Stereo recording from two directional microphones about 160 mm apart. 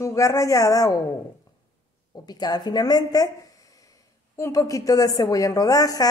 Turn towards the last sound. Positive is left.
turn(degrees=20)  # may be behind; listen again after turning